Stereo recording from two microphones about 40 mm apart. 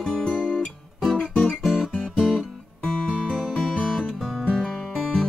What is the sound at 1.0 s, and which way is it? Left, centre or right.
Guitar, centre.